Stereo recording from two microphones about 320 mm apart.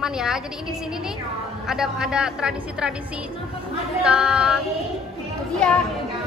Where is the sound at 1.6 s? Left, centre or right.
Centre.